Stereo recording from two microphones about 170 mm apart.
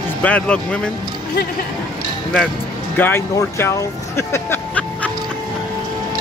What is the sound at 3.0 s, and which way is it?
Speech, 15° left (ahead or behind).